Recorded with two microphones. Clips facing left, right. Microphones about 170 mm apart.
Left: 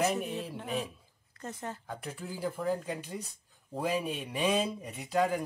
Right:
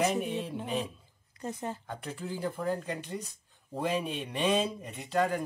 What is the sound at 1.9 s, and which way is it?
Speech, 5° left (ahead or behind).